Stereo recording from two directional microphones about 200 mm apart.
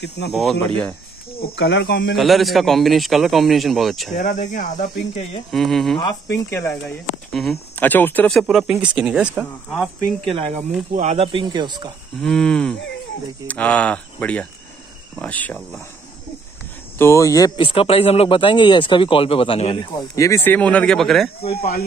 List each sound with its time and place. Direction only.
0.3 s speech: centre (ahead or behind)
1.4 s speech: 60° left (ahead or behind)
2.1 s speech: centre (ahead or behind)
4.1 s speech: 35° left (ahead or behind)
5.5 s speech: centre (ahead or behind)
5.9 s speech: 20° left (ahead or behind)
6.5 s speech: 10° left (ahead or behind)
11.0 s speech: 35° right (ahead or behind)
12.2 s speech: centre (ahead or behind)
17.0 s speech: 15° left (ahead or behind)
21.4 s speech: 30° left (ahead or behind)